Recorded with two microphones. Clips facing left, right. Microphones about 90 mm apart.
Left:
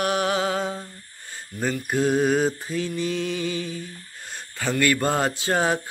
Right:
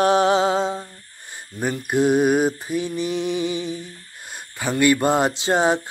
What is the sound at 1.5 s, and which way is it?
Mantra, 15° right (ahead or behind).